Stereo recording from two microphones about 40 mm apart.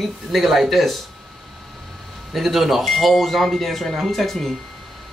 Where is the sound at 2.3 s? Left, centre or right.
Centre.